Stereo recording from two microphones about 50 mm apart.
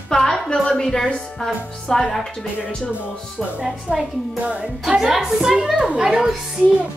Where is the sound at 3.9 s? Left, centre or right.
Right.